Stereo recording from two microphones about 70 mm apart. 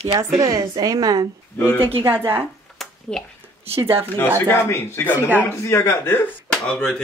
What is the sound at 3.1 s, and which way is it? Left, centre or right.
Speech, centre.